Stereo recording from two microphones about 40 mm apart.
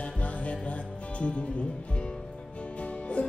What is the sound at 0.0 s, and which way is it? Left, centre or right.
Music, left.